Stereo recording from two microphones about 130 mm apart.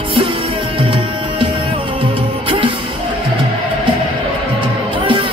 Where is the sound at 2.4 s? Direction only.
40° right (ahead or behind).